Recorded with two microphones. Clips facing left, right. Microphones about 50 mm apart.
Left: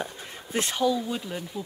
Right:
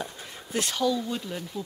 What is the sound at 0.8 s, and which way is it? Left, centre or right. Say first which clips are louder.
Speech: left 1 dB; centre.